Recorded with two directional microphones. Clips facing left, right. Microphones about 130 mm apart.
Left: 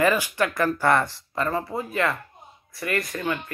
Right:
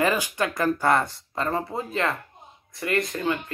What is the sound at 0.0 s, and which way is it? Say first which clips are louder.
Speech: left 2 dB; 20° right (ahead or behind).